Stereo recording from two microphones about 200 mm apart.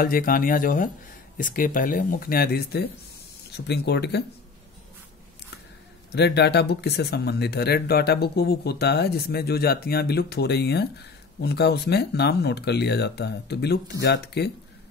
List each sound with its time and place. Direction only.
0.0 s speech: 45° left (ahead or behind)
6.1 s speech: 55° left (ahead or behind)